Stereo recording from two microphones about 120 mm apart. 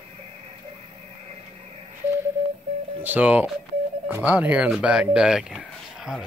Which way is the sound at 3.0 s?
15° right (ahead or behind).